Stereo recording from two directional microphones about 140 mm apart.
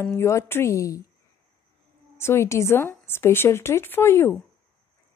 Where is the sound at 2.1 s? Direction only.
20° left (ahead or behind).